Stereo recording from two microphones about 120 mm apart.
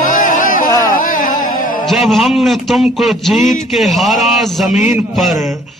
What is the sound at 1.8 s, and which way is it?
A man's voice, centre (ahead or behind).